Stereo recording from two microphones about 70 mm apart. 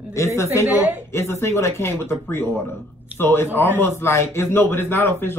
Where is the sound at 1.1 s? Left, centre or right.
Left.